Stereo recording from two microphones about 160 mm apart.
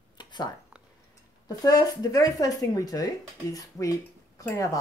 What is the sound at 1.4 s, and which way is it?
Speech, 25° left (ahead or behind).